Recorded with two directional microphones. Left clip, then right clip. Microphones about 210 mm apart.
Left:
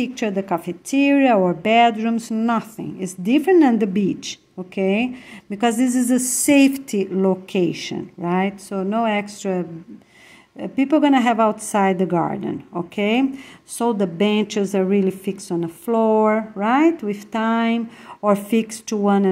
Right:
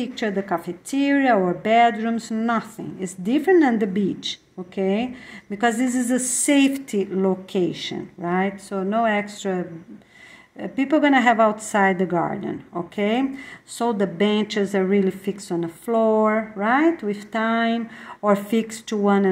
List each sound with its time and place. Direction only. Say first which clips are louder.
0.0 s a woman's voice: left 2 dB; 35° left (ahead or behind)